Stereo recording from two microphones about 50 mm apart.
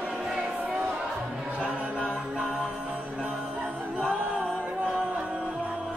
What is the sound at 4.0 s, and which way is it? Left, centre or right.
Music, right.